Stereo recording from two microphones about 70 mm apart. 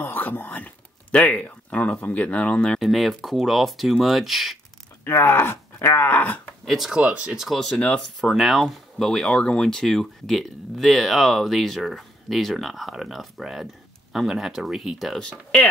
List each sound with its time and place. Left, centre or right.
0.0 s a sound: left
1.2 s speech: centre
2.8 s speech: centre
5.0 s speech: left
6.6 s speech: centre
7.0 s speech: centre
7.4 s speech: centre